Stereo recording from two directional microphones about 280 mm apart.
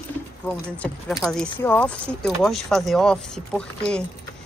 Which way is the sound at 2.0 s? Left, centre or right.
Centre.